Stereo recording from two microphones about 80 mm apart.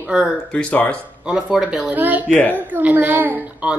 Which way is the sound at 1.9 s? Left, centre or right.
Right.